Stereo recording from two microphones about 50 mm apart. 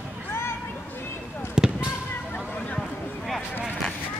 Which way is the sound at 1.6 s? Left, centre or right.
Centre.